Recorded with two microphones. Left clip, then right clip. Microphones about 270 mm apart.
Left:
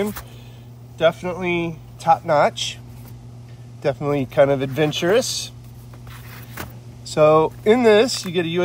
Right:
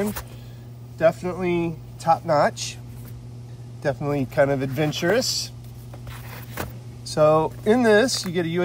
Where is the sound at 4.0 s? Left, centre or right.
Centre.